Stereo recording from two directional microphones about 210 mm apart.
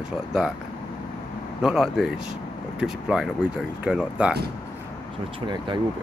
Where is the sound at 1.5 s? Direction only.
Centre (ahead or behind).